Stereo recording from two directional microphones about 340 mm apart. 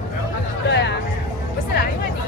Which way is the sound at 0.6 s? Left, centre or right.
Left.